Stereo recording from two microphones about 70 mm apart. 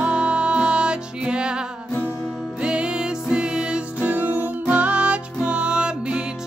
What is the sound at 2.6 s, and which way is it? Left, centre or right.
Music, centre.